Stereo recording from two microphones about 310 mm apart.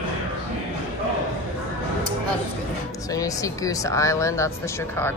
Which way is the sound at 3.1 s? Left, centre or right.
Centre.